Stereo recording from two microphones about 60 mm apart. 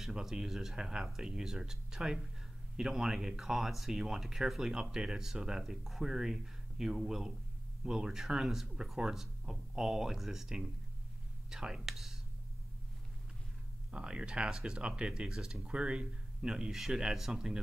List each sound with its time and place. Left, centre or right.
0.0 s speech: centre
13.9 s speech: centre